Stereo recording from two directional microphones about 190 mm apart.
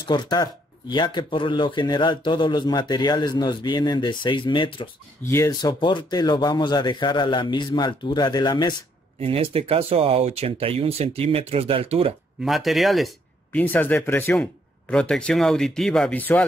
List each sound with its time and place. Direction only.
0.0 s speech: 25° left (ahead or behind)
5.2 s speech: 15° left (ahead or behind)
9.2 s speech: 30° right (ahead or behind)
12.4 s speech: centre (ahead or behind)